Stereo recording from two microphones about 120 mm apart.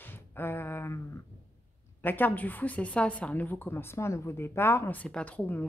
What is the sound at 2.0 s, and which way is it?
A woman's voice, 15° left (ahead or behind).